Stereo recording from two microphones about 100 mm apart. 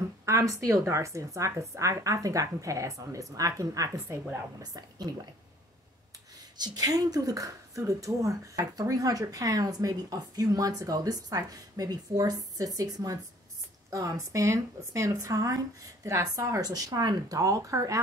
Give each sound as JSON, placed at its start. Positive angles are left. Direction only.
{"t": 0.2, "sound": "speech", "side_deg": -30}
{"t": 6.6, "sound": "speech", "side_deg": -40}